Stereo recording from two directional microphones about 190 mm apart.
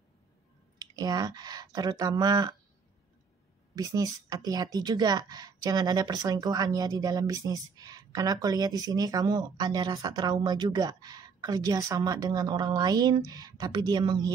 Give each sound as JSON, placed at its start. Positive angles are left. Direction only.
{"t": 0.7, "sound": "a woman's voice", "side_deg": -20}
{"t": 3.7, "sound": "a woman's voice", "side_deg": -20}